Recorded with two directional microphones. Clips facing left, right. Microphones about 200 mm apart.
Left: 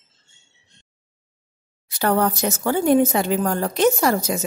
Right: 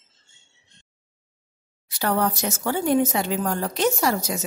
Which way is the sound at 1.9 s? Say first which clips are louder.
Left 3 dB; 50° left (ahead or behind).